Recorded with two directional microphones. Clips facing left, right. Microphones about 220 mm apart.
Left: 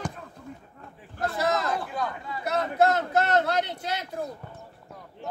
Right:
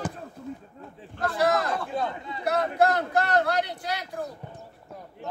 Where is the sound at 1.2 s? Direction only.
25° left (ahead or behind).